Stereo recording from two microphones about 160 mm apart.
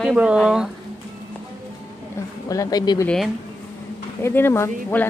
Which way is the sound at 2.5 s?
20° left (ahead or behind).